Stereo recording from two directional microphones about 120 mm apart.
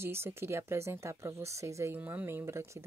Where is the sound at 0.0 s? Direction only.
20° right (ahead or behind).